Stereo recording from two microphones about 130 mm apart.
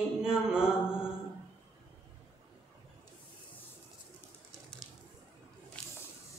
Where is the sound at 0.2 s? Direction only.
5° right (ahead or behind).